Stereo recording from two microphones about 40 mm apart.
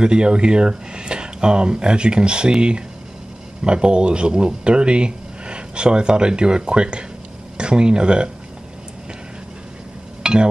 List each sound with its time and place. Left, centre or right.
0.0 s speech: right
10.2 s music: right